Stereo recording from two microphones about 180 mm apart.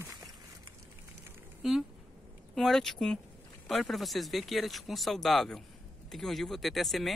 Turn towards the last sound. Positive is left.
turn(degrees=0)  # may be behind; listen again after turning